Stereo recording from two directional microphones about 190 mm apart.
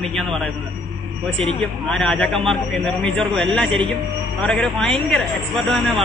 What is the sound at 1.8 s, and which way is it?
A man's voice, 5° left (ahead or behind).